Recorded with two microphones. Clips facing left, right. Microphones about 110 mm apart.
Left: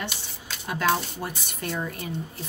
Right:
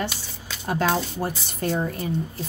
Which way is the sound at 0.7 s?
35° right (ahead or behind).